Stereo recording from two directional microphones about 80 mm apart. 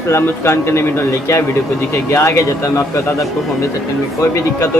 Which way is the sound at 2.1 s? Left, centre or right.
Left.